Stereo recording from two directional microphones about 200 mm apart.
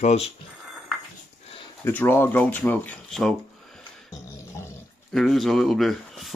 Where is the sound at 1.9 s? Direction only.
10° left (ahead or behind).